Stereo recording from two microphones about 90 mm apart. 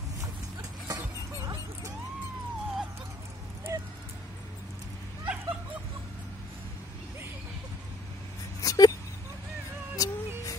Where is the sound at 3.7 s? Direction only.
35° right (ahead or behind).